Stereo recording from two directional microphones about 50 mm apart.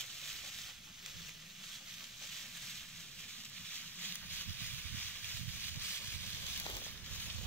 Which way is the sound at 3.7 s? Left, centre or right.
Left.